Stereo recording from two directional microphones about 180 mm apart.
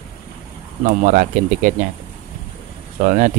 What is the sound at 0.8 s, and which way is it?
Speech, 45° right (ahead or behind).